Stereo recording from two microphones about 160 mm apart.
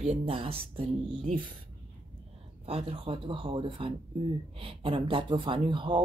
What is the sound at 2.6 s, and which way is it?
Speech, 35° right (ahead or behind).